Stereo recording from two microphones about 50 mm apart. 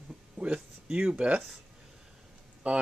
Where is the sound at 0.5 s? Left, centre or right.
Right.